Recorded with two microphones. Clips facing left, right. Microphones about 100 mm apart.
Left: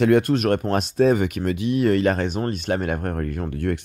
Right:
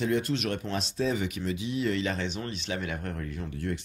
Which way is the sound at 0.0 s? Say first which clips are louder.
Left 10 dB; 60° left (ahead or behind).